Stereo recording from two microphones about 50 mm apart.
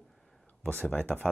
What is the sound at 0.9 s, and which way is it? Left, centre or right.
Speech, left.